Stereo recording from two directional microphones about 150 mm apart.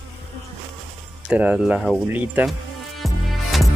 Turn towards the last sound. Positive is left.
turn(degrees=0)  # may be behind; listen again after turning